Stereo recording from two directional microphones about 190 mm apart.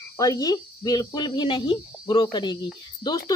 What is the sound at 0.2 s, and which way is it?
Speech, 20° left (ahead or behind).